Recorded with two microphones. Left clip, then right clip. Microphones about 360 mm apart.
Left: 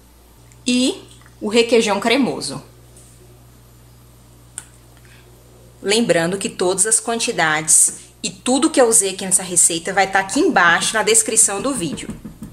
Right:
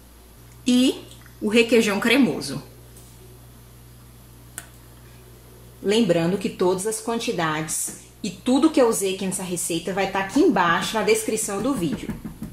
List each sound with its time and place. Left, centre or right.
0.7 s speech: centre
5.9 s a woman's voice: left